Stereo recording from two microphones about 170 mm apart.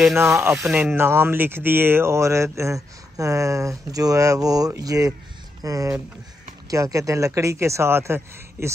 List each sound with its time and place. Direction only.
0.1 s speech: 15° right (ahead or behind)
0.7 s speech: 5° right (ahead or behind)
0.9 s speech: 15° right (ahead or behind)